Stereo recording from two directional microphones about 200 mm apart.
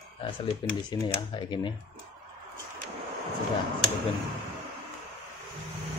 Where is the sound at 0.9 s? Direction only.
25° left (ahead or behind).